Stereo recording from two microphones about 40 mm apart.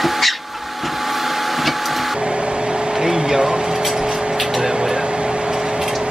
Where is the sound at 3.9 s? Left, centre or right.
Centre.